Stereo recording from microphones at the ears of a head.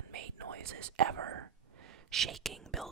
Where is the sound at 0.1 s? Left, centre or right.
Right.